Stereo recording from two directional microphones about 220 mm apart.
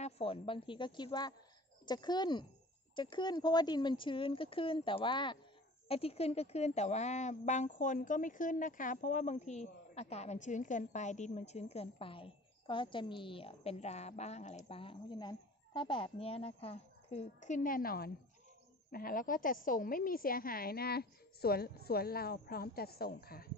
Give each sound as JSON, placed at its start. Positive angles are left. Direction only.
{"t": 0.0, "sound": "a woman's voice", "side_deg": 25}